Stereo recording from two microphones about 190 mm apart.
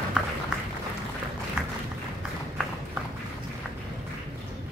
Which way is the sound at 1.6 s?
5° right (ahead or behind).